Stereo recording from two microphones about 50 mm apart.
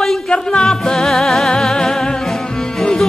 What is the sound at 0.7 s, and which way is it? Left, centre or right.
Music, centre.